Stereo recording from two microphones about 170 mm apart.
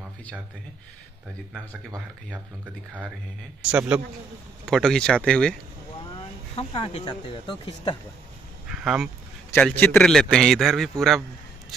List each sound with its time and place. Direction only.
2.6 s speech: 10° right (ahead or behind)
4.6 s a man's voice: 5° left (ahead or behind)
6.5 s speech: 35° left (ahead or behind)
8.8 s speech: 5° right (ahead or behind)
9.5 s a man's voice: 10° left (ahead or behind)